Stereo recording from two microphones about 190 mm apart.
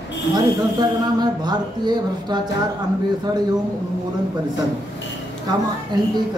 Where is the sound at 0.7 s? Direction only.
20° right (ahead or behind).